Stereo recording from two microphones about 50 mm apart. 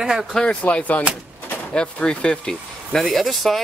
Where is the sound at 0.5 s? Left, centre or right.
Left.